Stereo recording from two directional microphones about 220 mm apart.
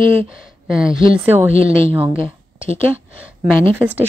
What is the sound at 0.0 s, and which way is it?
Speech, 25° right (ahead or behind).